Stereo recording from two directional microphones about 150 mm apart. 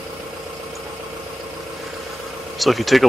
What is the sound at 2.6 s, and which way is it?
Speech, centre (ahead or behind).